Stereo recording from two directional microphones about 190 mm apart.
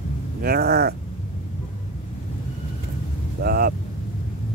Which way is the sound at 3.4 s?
55° right (ahead or behind).